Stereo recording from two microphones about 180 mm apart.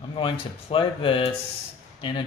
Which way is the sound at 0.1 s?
30° left (ahead or behind).